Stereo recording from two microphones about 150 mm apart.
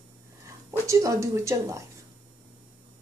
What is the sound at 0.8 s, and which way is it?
Speech, 20° right (ahead or behind).